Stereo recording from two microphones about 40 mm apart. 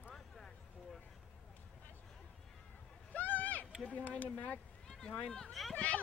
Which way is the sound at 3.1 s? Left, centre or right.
Left.